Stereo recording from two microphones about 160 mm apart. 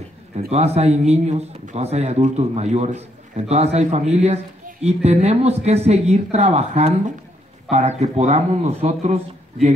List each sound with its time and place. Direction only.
0.5 s a man's voice: 40° right (ahead or behind)